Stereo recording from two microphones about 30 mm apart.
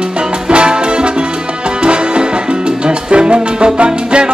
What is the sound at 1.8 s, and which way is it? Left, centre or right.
Salsa music, right.